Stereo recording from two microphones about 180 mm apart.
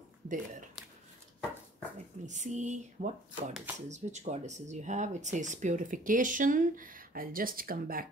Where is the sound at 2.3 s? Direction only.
40° right (ahead or behind).